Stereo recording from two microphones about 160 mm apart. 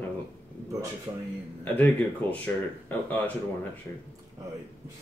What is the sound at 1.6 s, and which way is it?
Speech, 10° left (ahead or behind).